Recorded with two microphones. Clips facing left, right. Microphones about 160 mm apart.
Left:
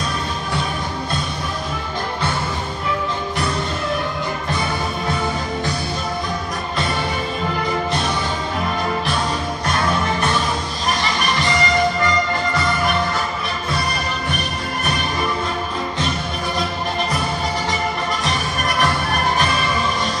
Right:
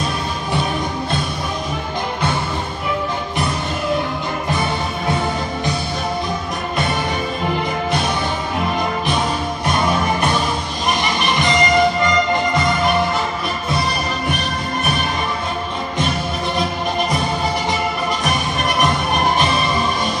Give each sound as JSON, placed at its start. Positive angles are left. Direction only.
{"t": 9.7, "sound": "music", "side_deg": -15}
{"t": 18.2, "sound": "music", "side_deg": -15}